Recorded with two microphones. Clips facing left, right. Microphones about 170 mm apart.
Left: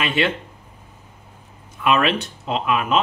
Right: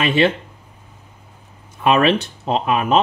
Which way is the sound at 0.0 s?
30° right (ahead or behind).